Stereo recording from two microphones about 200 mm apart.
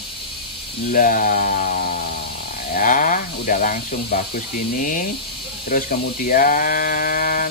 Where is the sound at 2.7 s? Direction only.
40° left (ahead or behind).